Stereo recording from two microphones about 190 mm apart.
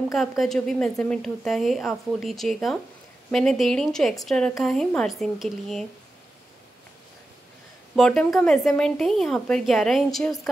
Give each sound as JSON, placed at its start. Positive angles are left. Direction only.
{"t": 0.4, "sound": "speech", "side_deg": 0}
{"t": 7.9, "sound": "speech", "side_deg": 0}